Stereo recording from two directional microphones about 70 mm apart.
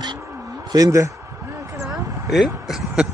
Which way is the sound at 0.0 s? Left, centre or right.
Right.